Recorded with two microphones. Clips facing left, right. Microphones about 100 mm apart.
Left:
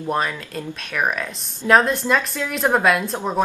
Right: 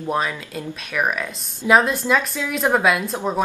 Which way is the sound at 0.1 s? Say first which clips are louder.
Even; centre (ahead or behind).